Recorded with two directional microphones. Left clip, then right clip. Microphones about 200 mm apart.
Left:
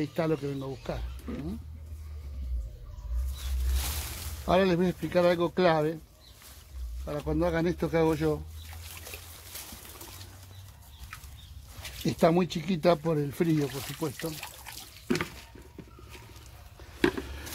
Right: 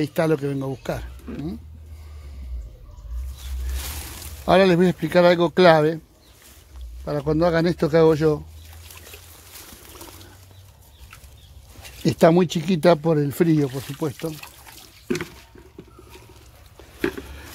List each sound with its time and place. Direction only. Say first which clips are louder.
0.0 s speech: right 8 dB; 50° right (ahead or behind)
4.5 s speech: right 9 dB; 45° right (ahead or behind)
7.1 s speech: right 9 dB; 35° right (ahead or behind)
12.0 s speech: right 8 dB; 40° right (ahead or behind)